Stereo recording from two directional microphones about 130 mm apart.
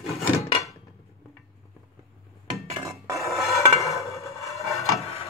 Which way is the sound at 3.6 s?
25° left (ahead or behind).